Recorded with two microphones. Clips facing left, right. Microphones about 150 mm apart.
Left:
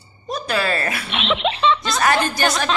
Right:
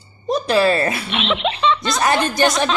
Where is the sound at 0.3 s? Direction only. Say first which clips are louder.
Right 6 dB; 25° right (ahead or behind).